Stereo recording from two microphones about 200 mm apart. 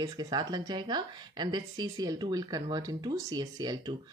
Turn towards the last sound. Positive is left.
turn(degrees=-20)  # may be behind; listen again after turning